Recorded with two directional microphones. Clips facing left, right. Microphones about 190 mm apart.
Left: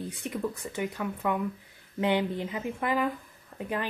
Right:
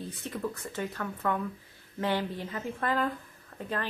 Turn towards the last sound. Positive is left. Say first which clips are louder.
# left 2 dB
turn(degrees=15)  # may be behind; listen again after turning